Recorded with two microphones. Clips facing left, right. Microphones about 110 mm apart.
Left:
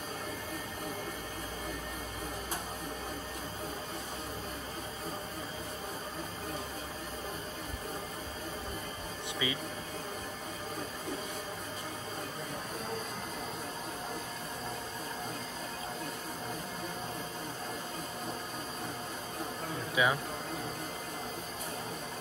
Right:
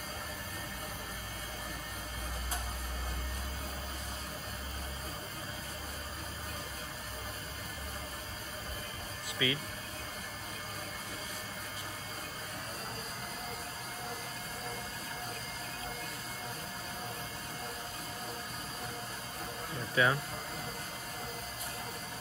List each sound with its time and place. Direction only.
9.4 s speech: 20° left (ahead or behind)
20.0 s speech: 10° left (ahead or behind)